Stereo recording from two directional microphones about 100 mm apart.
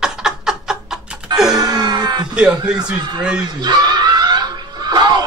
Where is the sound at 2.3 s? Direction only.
10° right (ahead or behind).